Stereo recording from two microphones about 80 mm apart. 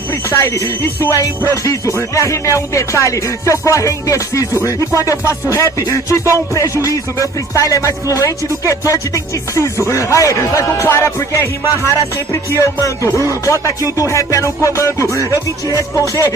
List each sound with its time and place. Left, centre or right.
0.3 s speech: left
1.6 s speech: left
13.1 s speech: right
13.5 s speech: left